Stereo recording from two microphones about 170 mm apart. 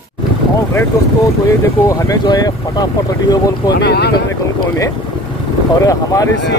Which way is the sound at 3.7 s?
75° left (ahead or behind).